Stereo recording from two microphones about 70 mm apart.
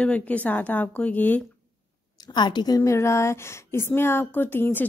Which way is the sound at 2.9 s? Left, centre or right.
Left.